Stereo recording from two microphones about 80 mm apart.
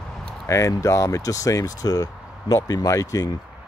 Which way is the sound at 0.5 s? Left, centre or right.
Left.